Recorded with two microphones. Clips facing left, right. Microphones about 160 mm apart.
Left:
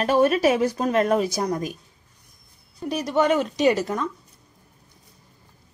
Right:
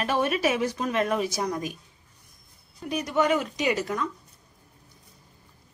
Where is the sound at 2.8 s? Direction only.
30° left (ahead or behind).